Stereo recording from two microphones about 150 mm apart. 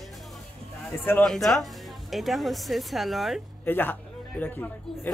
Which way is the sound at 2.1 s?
Centre (ahead or behind).